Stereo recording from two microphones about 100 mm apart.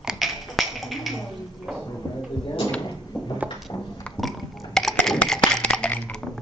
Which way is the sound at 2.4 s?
45° left (ahead or behind).